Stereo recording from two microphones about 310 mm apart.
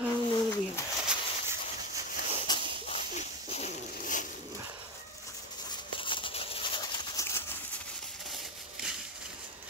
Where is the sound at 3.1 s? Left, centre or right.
Left.